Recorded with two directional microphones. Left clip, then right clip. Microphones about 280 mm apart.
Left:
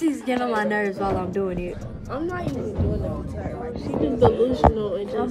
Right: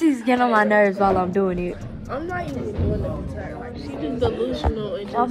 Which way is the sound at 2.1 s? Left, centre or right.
Centre.